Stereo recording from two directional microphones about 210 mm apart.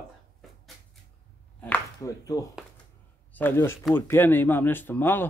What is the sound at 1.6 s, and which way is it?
A man's voice, 15° left (ahead or behind).